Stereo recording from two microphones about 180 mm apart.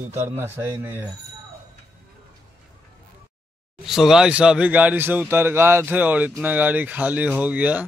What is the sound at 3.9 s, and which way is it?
Speech, centre (ahead or behind).